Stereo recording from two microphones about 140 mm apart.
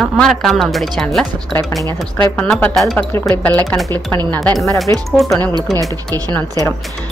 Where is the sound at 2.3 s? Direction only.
10° left (ahead or behind).